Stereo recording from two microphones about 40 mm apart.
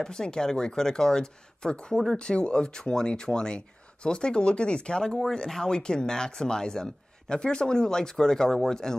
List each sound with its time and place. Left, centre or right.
0.0 s speech: centre